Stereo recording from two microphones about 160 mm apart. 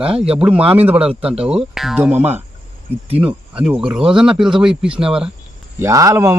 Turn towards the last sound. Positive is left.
turn(degrees=-20)  # may be behind; listen again after turning